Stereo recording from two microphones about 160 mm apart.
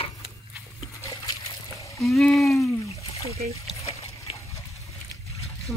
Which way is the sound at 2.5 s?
20° left (ahead or behind).